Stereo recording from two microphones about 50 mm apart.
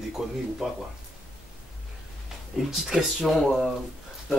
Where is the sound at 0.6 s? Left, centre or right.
Centre.